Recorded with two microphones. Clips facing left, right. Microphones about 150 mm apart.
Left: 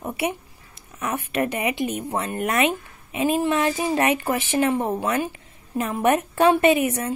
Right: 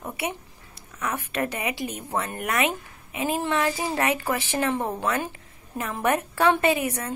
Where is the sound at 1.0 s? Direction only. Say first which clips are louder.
Left 3 dB; 20° left (ahead or behind).